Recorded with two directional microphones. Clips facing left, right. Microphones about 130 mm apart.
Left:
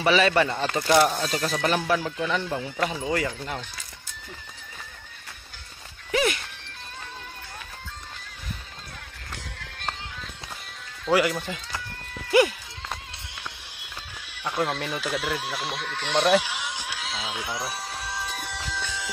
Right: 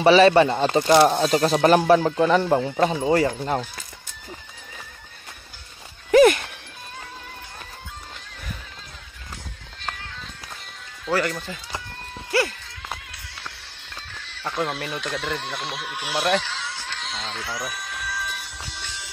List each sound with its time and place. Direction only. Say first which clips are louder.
0.0 s speech: right 7 dB; 30° right (ahead or behind)
2.7 s speech: right 7 dB; 30° right (ahead or behind)
6.1 s music: right 11 dB; 50° right (ahead or behind)
11.1 s speech: left 2 dB; 10° left (ahead or behind)
12.3 s a sound: left 4 dB; 15° left (ahead or behind)
14.2 s a sound: right 1 dB; 10° left (ahead or behind)
14.6 s speech: even; centre (ahead or behind)
16.3 s honk: left 2 dB; 15° left (ahead or behind)
17.4 s speech: right 1 dB; 20° left (ahead or behind)
17.6 s music: even; 30° left (ahead or behind)